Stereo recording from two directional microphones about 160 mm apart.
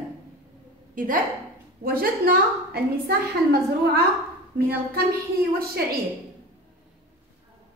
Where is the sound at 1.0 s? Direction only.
60° right (ahead or behind); by 4.0 s 75° right (ahead or behind).